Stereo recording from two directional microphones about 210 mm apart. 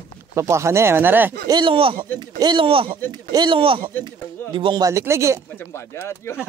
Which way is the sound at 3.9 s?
10° left (ahead or behind).